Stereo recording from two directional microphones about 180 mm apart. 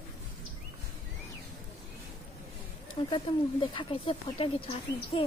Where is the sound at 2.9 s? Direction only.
25° left (ahead or behind).